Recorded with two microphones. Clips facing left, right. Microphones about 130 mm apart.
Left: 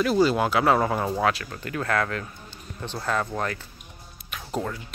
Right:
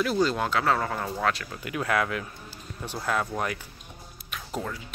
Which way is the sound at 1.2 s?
Centre (ahead or behind).